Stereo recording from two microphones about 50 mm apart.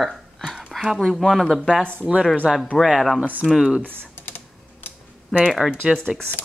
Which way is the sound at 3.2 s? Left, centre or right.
Right.